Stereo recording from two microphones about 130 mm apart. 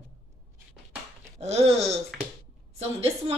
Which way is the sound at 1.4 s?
55° right (ahead or behind).